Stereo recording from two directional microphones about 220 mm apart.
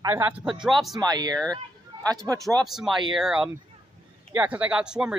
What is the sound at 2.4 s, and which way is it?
Speech, centre (ahead or behind).